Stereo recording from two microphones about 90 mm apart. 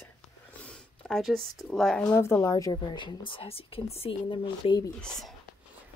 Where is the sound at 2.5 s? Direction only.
55° left (ahead or behind); by 4.7 s 70° left (ahead or behind).